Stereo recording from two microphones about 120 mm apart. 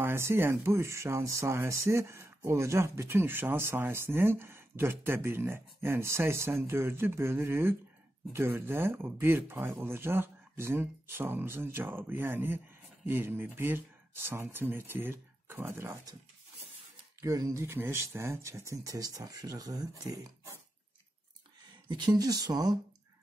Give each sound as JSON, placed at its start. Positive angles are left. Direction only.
{"t": 0.0, "sound": "speech", "side_deg": -20}
{"t": 17.2, "sound": "speech", "side_deg": -30}
{"t": 21.8, "sound": "speech", "side_deg": -35}